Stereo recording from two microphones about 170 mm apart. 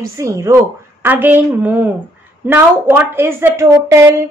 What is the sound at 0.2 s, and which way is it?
A woman's voice, 15° right (ahead or behind).